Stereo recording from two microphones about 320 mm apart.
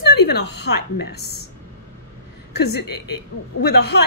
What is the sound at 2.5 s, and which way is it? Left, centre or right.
A woman's voice, left.